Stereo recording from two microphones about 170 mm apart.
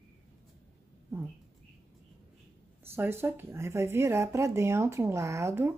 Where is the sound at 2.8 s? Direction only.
15° right (ahead or behind).